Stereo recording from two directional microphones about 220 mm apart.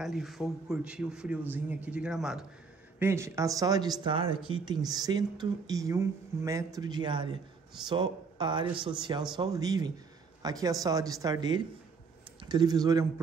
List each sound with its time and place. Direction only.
0.0 s a man's voice: centre (ahead or behind); by 13.0 s 15° right (ahead or behind)